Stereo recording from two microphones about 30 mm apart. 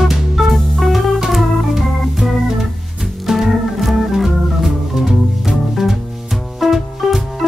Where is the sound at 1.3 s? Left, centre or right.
Centre.